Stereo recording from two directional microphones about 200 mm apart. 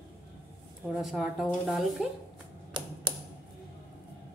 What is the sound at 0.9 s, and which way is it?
Speech, centre (ahead or behind).